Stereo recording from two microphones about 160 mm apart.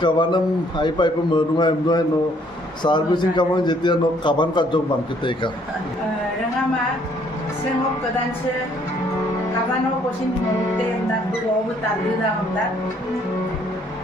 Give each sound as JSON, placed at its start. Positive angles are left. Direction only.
{"t": 0.0, "sound": "a man's voice", "side_deg": 30}